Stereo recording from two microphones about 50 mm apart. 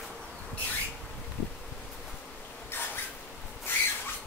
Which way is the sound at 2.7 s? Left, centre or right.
Left.